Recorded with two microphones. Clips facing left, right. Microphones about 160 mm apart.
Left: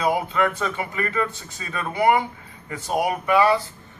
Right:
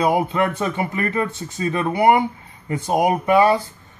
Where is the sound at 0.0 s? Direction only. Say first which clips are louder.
Right 3 dB; 30° right (ahead or behind).